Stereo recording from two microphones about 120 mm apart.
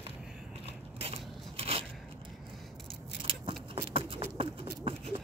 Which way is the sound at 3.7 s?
50° right (ahead or behind).